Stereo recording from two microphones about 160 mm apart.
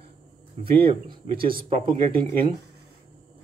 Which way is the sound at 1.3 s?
65° right (ahead or behind).